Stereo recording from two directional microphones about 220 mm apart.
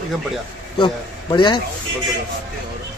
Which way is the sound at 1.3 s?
20° left (ahead or behind).